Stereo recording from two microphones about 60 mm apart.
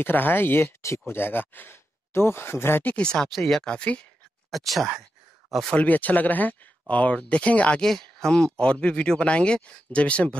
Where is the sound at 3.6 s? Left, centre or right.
Centre.